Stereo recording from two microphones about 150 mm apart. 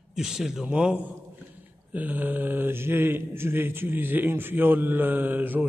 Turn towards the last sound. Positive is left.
turn(degrees=-10)  # may be behind; listen again after turning